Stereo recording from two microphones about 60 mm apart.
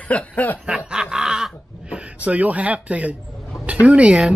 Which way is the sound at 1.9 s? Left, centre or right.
Right.